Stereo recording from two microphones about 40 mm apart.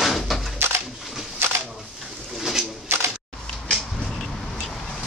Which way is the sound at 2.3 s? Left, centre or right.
Centre.